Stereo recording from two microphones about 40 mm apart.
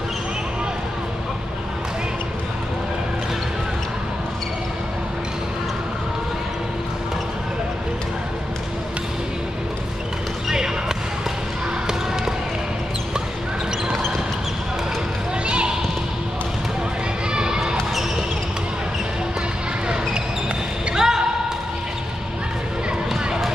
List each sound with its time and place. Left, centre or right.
10.5 s basketball bounce: centre
15.4 s basketball bounce: right
17.3 s basketball bounce: centre
20.9 s basketball bounce: centre